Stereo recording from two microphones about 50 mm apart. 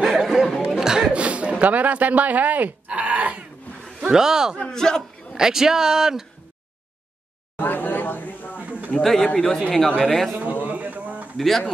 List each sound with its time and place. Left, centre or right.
0.0 s a sound: centre
0.7 s chuckle: centre
1.1 s chuckle: right
1.6 s speech: right
4.1 s speech: centre
4.6 s a man's voice: centre
5.3 s speech: centre
7.5 s a sound: left
8.5 s a sound: right
9.0 s a man's voice: centre
10.6 s a sound: right
11.3 s speech: centre